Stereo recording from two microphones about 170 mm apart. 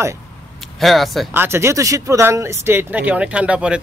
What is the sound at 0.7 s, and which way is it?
Speech, centre (ahead or behind).